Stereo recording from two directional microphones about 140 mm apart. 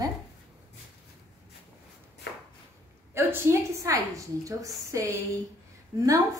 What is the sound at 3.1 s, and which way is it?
A woman's voice, 15° right (ahead or behind).